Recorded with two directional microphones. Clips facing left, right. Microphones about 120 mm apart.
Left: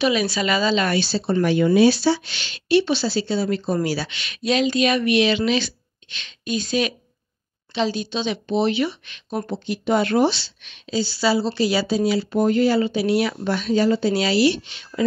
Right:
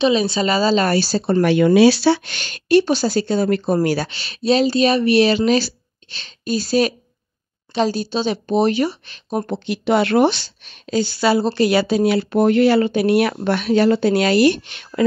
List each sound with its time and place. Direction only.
0.0 s a woman's voice: 25° right (ahead or behind)
1.4 s speech: 75° right (ahead or behind); by 4.1 s 50° right (ahead or behind)
4.1 s a woman's voice: 35° right (ahead or behind)
9.5 s a woman's voice: 75° right (ahead or behind); by 15.0 s 60° right (ahead or behind)